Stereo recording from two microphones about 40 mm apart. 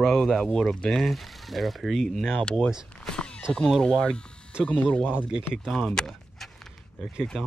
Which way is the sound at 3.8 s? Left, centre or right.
Left.